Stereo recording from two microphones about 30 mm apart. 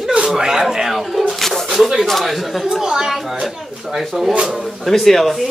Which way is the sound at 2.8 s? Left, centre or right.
Centre.